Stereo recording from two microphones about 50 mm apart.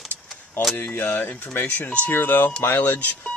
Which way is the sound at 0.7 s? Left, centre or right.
Left.